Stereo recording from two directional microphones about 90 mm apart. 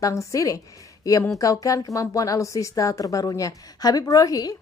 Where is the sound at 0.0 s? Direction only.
35° left (ahead or behind).